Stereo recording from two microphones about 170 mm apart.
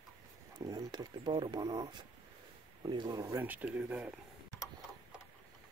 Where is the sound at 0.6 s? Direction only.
25° right (ahead or behind); by 4.1 s 10° right (ahead or behind).